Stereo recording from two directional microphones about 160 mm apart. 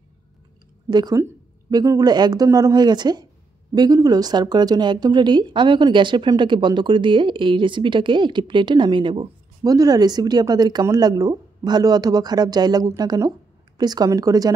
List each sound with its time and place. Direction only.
0.8 s speech: 25° right (ahead or behind)